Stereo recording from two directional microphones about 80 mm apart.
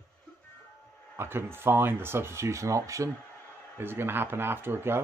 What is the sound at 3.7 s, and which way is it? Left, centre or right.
Speech, right.